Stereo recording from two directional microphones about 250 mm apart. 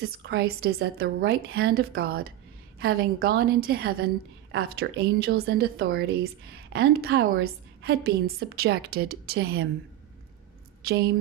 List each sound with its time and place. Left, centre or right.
0.0 s a woman's voice: right
10.8 s a woman's voice: right